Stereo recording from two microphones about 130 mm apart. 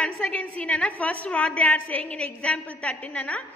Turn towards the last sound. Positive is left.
turn(degrees=10)  # may be behind; listen again after turning